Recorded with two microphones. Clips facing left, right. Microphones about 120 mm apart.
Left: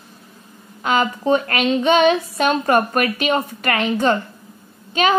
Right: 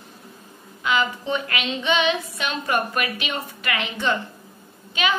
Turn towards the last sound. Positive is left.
turn(degrees=40)  # may be behind; listen again after turning